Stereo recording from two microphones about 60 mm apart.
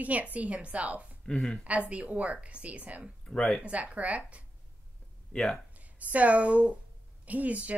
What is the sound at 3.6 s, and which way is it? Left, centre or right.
Speech, right.